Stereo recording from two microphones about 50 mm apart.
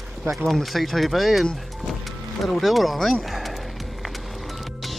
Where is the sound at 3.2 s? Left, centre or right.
Centre.